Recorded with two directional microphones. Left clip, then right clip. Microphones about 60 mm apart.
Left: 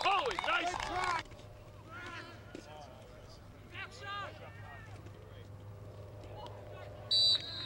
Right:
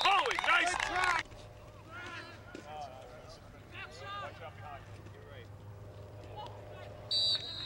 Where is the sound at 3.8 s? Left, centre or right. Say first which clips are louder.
Left 1 dB; centre.